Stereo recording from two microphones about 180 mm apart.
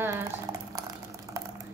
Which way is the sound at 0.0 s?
15° right (ahead or behind).